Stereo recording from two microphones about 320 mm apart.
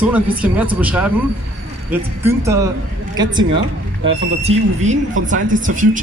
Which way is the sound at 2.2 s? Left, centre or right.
Centre.